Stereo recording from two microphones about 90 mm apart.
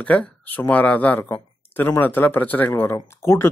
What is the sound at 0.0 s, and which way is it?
A man's voice, 15° left (ahead or behind).